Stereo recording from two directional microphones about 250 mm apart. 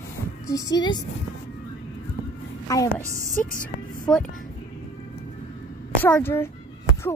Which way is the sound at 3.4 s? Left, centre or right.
Left.